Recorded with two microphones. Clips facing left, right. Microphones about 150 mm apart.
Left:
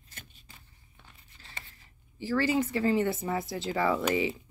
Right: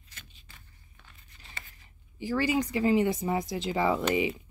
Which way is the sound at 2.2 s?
15° right (ahead or behind).